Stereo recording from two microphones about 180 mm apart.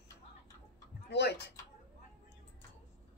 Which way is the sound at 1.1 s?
70° left (ahead or behind).